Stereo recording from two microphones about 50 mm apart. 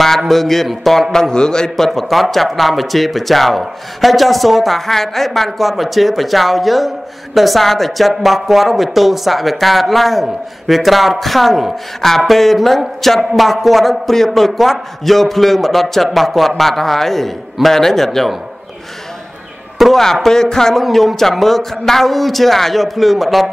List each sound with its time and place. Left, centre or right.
0.3 s speech: centre
2.0 s speech: centre
19.8 s speech: centre
20.8 s speech: centre